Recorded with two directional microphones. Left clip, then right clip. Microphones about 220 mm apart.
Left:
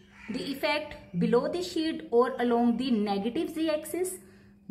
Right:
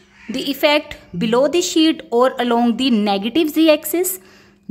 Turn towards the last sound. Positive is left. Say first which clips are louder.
# right 15 dB
turn(degrees=-45)  # may be behind; listen again after turning